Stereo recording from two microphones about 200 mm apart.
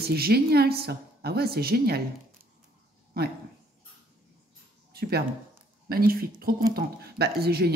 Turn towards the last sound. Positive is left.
turn(degrees=-55)  # may be behind; listen again after turning